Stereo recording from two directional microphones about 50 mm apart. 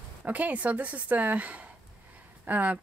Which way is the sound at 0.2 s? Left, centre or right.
Right.